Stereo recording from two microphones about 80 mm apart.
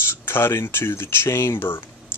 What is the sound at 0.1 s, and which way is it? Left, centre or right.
Speech, left.